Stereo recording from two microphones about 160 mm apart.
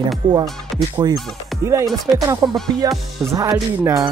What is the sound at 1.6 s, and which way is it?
Speech, 20° right (ahead or behind).